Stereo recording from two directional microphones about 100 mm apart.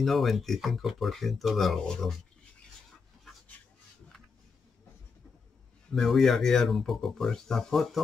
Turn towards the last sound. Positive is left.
turn(degrees=0)  # may be behind; listen again after turning